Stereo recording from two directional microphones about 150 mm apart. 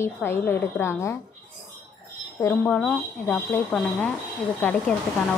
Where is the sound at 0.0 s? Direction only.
15° left (ahead or behind).